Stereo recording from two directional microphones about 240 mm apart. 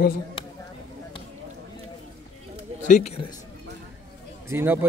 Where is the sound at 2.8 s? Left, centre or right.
Left.